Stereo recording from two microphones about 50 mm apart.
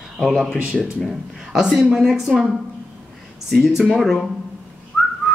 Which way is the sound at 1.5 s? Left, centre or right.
Centre.